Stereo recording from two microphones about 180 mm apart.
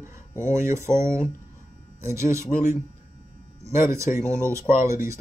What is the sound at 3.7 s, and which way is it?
Speech, 15° right (ahead or behind).